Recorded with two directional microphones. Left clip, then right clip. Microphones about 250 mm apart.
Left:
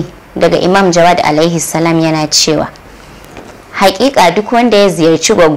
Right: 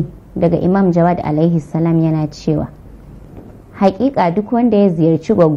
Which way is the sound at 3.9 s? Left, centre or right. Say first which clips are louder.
Left 7 dB; centre.